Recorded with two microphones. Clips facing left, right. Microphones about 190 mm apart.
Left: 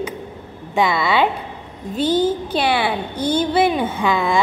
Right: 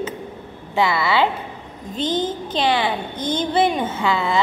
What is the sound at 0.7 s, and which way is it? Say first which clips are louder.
A woman's voice: left 1 dB; 15° left (ahead or behind).